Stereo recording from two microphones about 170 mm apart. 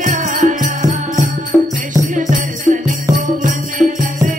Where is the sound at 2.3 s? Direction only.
50° right (ahead or behind).